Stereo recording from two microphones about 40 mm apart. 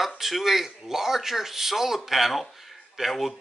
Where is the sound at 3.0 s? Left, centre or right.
Centre.